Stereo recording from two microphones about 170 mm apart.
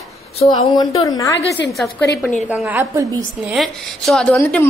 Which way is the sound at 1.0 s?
20° left (ahead or behind).